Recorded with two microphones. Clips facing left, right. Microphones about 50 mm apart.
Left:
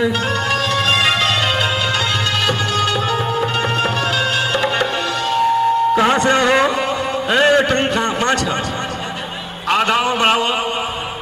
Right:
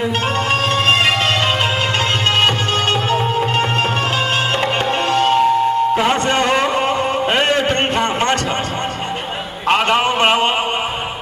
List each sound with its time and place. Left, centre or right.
0.5 s music: right
2.4 s music: right
6.4 s a sound: left
7.2 s music: right
7.6 s a man's voice: right
9.7 s music: right